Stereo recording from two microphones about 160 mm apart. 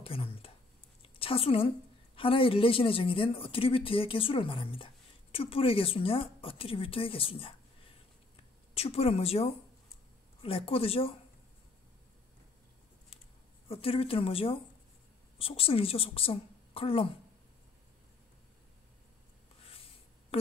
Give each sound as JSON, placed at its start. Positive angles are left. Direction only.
{"t": 0.0, "sound": "a woman's voice", "side_deg": 35}
{"t": 8.7, "sound": "a woman's voice", "side_deg": 40}
{"t": 13.7, "sound": "a woman's voice", "side_deg": 35}